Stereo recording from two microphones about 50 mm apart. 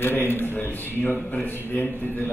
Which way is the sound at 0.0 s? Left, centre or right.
Left.